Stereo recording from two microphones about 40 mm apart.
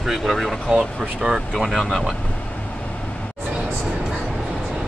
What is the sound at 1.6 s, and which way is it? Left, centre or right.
Speech, centre.